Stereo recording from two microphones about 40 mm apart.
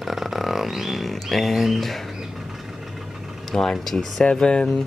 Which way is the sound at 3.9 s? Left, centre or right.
Left.